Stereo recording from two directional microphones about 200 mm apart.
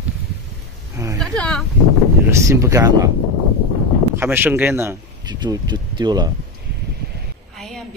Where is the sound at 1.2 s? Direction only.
5° left (ahead or behind).